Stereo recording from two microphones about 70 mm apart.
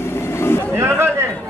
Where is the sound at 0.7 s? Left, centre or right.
Right.